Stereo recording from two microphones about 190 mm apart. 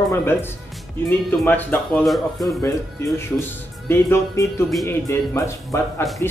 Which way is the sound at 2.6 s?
15° left (ahead or behind).